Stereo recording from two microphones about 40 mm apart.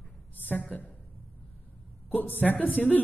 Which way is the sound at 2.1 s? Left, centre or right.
Left.